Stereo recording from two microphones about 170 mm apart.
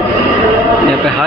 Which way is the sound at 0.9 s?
5° left (ahead or behind).